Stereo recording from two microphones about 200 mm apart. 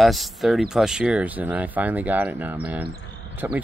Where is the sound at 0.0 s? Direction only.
Centre (ahead or behind).